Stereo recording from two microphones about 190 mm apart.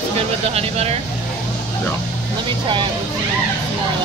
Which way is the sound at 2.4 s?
25° right (ahead or behind).